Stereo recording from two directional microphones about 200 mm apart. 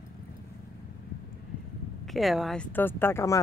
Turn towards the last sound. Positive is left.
turn(degrees=15)  # may be behind; listen again after turning